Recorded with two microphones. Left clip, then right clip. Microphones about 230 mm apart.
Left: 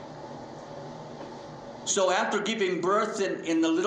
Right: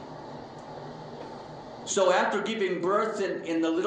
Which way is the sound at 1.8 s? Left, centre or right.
Left.